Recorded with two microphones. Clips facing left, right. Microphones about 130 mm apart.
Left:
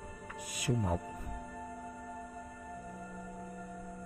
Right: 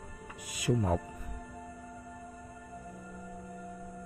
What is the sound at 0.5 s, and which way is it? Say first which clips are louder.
Speech: right 4 dB; 90° right.